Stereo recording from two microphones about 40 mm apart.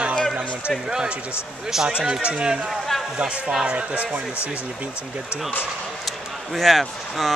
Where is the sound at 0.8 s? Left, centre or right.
Centre; by 4.2 s right.